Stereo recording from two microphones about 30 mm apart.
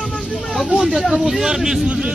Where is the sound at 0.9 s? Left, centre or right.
Centre.